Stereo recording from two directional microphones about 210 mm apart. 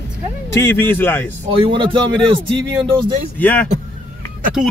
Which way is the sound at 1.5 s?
25° right (ahead or behind).